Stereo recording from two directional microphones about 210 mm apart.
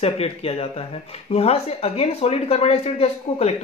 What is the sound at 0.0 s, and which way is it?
Speech, 30° left (ahead or behind).